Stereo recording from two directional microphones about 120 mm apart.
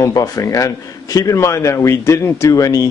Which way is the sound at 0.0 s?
30° left (ahead or behind).